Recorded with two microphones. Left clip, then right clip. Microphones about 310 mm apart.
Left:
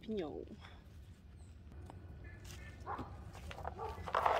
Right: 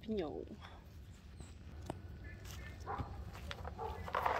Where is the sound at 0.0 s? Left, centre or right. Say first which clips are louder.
Right 1 dB; centre.